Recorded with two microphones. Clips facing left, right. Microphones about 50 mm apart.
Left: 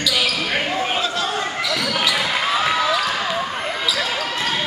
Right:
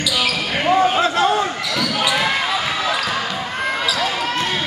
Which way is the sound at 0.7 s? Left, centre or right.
Right.